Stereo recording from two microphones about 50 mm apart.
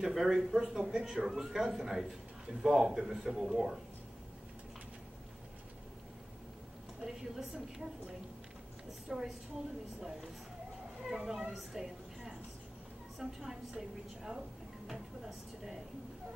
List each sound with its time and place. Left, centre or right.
0.0 s speech: centre
7.0 s speech: centre
11.5 s a sound: centre
13.2 s speech: centre